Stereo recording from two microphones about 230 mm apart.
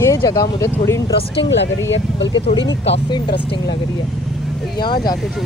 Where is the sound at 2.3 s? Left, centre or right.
Left.